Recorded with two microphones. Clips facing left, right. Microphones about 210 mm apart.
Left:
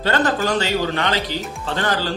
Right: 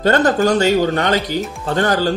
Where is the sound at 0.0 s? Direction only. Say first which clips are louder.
Right 6 dB; 45° right (ahead or behind).